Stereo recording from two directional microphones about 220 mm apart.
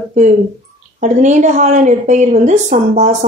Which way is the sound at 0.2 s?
35° right (ahead or behind).